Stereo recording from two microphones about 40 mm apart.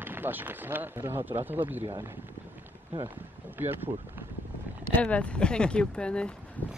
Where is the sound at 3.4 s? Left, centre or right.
Right.